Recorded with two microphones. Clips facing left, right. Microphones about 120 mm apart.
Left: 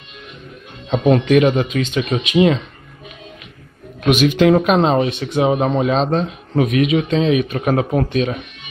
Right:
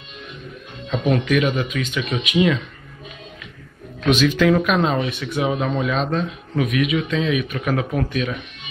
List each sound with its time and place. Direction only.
0.8 s speech: 35° left (ahead or behind)
4.5 s speech: 30° left (ahead or behind)